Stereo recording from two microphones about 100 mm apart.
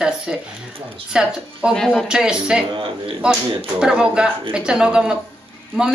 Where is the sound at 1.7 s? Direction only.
5° left (ahead or behind).